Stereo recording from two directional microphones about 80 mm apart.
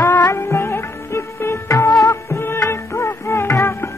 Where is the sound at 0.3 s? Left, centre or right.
Left.